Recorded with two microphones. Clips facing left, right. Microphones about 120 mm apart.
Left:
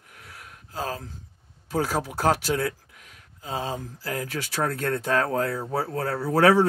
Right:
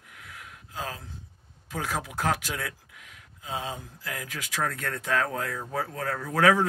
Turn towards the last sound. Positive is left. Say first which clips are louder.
# left 4 dB
turn(degrees=35)  # may be behind; listen again after turning